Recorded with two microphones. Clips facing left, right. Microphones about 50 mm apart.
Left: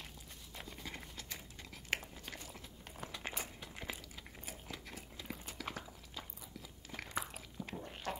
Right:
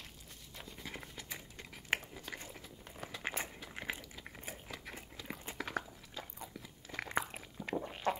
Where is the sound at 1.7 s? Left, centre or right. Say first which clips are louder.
Right 3 dB; centre.